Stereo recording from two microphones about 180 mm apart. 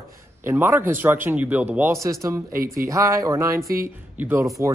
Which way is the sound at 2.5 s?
55° right (ahead or behind).